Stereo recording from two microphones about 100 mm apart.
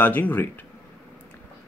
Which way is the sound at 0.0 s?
20° left (ahead or behind).